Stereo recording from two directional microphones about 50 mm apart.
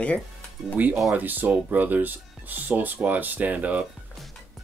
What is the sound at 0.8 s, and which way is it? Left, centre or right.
Speech, right.